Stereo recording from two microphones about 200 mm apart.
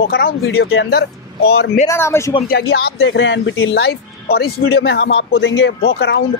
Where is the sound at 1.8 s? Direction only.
15° left (ahead or behind).